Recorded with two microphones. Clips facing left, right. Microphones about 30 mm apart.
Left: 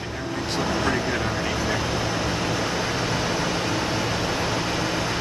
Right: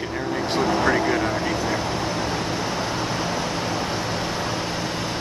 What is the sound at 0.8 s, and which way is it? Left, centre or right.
Speech, centre.